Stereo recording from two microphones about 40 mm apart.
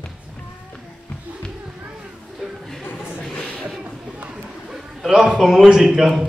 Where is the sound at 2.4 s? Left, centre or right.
Centre.